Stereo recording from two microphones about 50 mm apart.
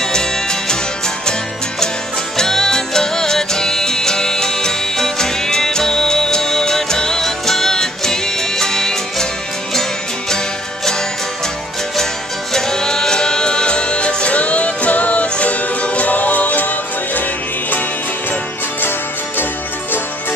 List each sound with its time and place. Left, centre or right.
0.0 s music: centre
2.3 s music: centre
12.5 s music: centre; by 17.2 s left
18.8 s music: left